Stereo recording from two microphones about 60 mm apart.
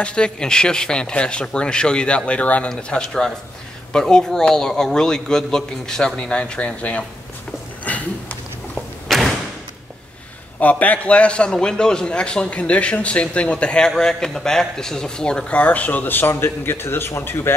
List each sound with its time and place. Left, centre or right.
0.0 s a man's voice: centre
2.7 s a man's voice: centre
7.8 s a sound: left
9.0 s thump: centre
10.6 s a man's voice: left